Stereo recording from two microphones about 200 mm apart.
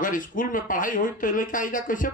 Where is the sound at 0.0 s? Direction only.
40° left (ahead or behind).